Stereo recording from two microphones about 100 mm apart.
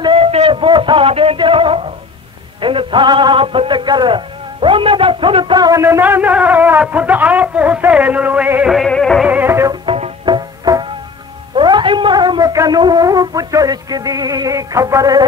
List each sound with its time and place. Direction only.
0.1 s a sound: 75° right (ahead or behind)
2.6 s a man's voice: 60° right (ahead or behind)
5.8 s a man's voice: 25° right (ahead or behind)
8.7 s music: 5° left (ahead or behind)
9.2 s music: 15° right (ahead or behind)
9.8 s music: 90° right
10.2 s music: 45° right (ahead or behind)
11.5 s a man's voice: 55° right (ahead or behind); by 15.2 s 35° right (ahead or behind)